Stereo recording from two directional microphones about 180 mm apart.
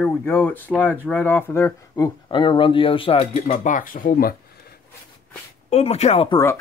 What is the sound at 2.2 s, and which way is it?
Speech, 25° left (ahead or behind).